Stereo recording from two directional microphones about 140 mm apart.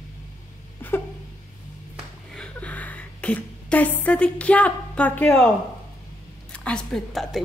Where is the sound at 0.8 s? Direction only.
15° left (ahead or behind).